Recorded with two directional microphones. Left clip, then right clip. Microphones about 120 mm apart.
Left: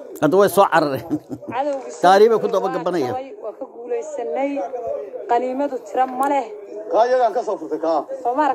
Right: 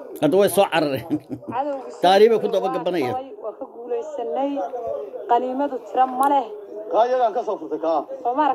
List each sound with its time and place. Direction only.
0.2 s speech: 45° left (ahead or behind)